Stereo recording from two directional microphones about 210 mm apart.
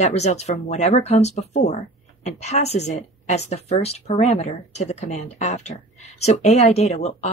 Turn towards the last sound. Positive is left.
turn(degrees=30)  # may be behind; listen again after turning